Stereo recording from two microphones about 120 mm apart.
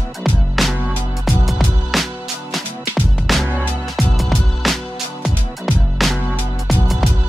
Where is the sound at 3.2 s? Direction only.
Centre (ahead or behind).